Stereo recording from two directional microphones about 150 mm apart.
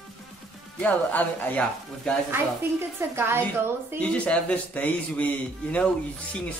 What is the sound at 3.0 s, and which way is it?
Speech, 15° right (ahead or behind).